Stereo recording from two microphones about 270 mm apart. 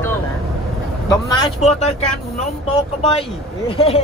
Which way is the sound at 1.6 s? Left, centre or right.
Left.